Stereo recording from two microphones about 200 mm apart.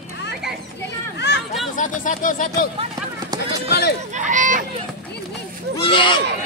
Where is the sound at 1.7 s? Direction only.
40° left (ahead or behind).